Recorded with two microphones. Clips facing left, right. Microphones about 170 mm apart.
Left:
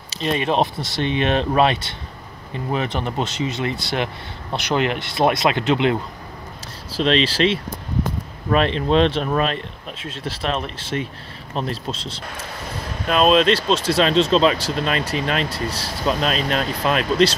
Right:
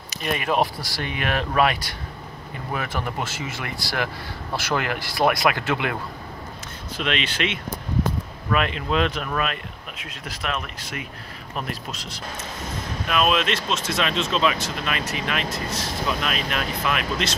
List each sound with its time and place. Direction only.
0.1 s speech: 25° left (ahead or behind)
6.9 s speech: 30° left (ahead or behind)